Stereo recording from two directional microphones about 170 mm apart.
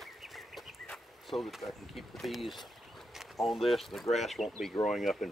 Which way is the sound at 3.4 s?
Centre (ahead or behind).